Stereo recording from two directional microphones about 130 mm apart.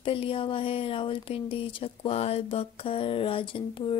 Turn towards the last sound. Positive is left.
turn(degrees=40)  # may be behind; listen again after turning